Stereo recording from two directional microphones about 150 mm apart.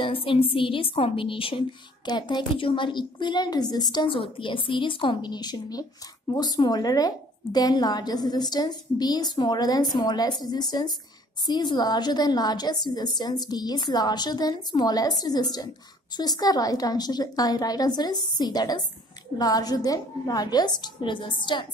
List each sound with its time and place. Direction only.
0.0 s a woman's voice: 35° left (ahead or behind)